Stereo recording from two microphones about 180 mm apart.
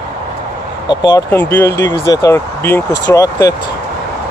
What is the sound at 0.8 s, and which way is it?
Speech, 20° left (ahead or behind).